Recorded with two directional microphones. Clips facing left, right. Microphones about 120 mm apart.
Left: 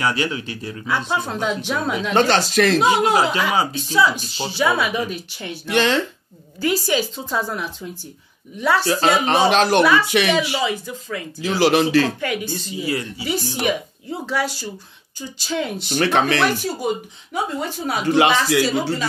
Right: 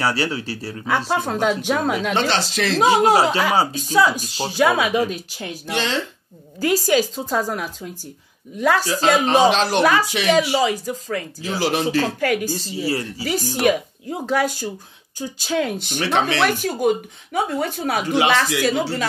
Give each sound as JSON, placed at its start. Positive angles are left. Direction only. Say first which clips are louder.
{"t": 0.0, "sound": "speech", "louder": "even", "side_deg": -35}
{"t": 1.1, "sound": "speech", "louder": "right 4 dB", "side_deg": -50}
{"t": 2.1, "sound": "speech", "louder": "left 4 dB", "side_deg": 50}
{"t": 2.8, "sound": "speech", "louder": "right 2 dB", "side_deg": -40}
{"t": 5.7, "sound": "speech", "louder": "left 6 dB", "side_deg": 55}
{"t": 6.6, "sound": "speech", "louder": "right 2 dB", "side_deg": -45}
{"t": 8.8, "sound": "speech", "louder": "even", "side_deg": 40}
{"t": 9.5, "sound": "speech", "louder": "left 2 dB", "side_deg": 55}
{"t": 10.5, "sound": "speech", "louder": "right 4 dB", "side_deg": -40}
{"t": 11.4, "sound": "speech", "louder": "left 5 dB", "side_deg": 75}
{"t": 12.2, "sound": "speech", "louder": "right 4 dB", "side_deg": -45}
{"t": 15.9, "sound": "speech", "louder": "left 5 dB", "side_deg": 50}
{"t": 16.4, "sound": "speech", "louder": "right 2 dB", "side_deg": -50}